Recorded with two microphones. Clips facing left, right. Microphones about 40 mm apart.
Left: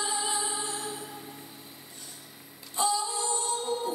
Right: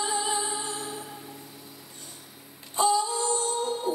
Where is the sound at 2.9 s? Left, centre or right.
Right.